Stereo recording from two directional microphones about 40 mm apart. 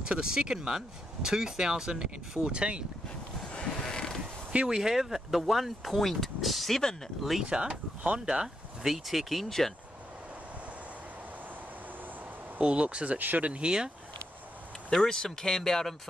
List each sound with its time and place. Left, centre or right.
0.0 s speech: right
3.5 s a sound: left
4.2 s zipper: right
4.6 s speech: centre
7.4 s speech: right
8.8 s speech: centre
12.5 s speech: right
13.2 s speech: right
13.5 s speech: right
15.0 s speech: centre